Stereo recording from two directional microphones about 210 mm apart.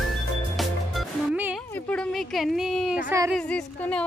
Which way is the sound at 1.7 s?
5° left (ahead or behind).